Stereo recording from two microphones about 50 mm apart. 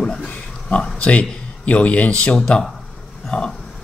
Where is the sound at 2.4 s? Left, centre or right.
Centre.